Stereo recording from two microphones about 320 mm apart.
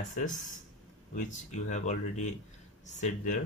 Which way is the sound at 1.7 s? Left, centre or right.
Left.